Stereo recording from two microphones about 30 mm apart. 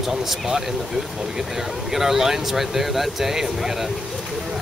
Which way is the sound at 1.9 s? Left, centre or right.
Centre.